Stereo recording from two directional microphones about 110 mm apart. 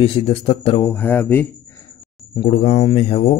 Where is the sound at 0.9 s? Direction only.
15° left (ahead or behind).